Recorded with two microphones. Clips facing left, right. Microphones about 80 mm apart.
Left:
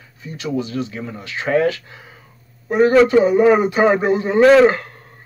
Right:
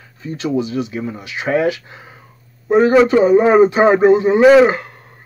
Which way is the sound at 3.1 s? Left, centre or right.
Right.